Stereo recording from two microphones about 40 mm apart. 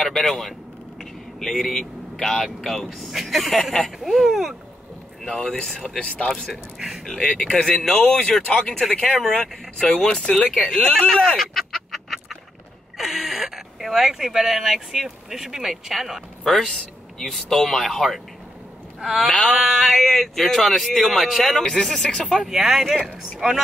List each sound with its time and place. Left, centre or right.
0.0 s a man's voice: centre
5.2 s speech: centre
6.5 s speech: centre
7.3 s speech: centre
8.7 s speech: centre; by 10.3 s left
10.7 s speech: centre
11.3 s chicken: centre
12.9 s speech: centre
19.5 s speech: centre
21.6 s speech: left
22.4 s speech: centre